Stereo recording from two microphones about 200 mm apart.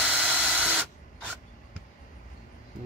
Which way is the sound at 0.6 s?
5° right (ahead or behind).